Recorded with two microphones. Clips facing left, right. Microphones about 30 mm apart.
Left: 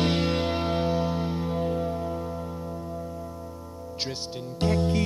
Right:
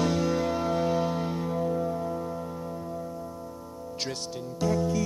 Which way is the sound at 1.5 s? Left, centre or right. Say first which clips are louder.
Right 1 dB; left.